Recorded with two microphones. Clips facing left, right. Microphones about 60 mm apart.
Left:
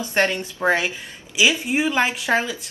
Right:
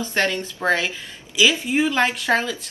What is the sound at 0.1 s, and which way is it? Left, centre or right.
A woman's voice, left.